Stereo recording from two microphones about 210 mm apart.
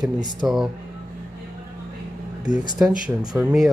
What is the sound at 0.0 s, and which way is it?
Speech, 20° right (ahead or behind).